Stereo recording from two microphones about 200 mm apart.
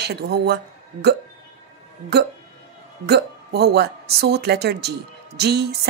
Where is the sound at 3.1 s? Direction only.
55° right (ahead or behind).